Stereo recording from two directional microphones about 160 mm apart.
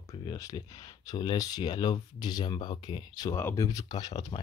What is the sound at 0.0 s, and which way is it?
Speech, 25° left (ahead or behind).